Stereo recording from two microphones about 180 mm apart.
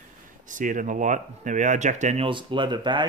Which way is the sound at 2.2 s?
25° right (ahead or behind).